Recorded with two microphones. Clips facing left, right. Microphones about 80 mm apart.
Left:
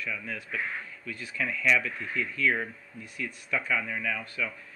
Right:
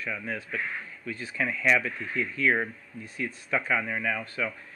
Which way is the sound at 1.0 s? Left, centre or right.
Right.